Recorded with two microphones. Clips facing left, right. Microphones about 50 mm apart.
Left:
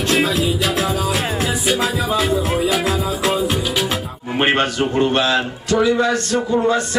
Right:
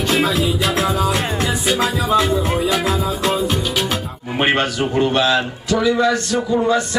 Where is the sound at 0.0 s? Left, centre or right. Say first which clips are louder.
Even; centre.